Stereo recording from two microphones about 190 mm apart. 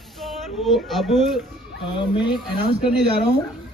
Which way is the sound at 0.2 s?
Centre (ahead or behind).